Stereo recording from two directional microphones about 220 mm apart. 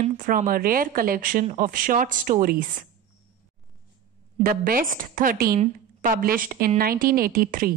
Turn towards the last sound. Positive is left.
turn(degrees=-40)  # may be behind; listen again after turning